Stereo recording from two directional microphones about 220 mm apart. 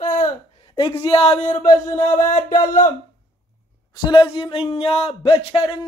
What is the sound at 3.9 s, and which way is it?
Speech, 20° left (ahead or behind).